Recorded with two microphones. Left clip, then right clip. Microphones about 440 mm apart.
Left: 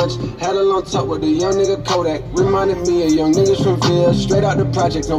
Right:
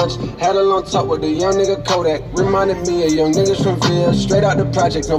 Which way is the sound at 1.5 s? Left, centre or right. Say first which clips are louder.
Even; right.